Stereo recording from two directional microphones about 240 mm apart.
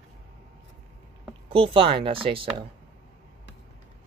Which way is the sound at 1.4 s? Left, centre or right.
Right.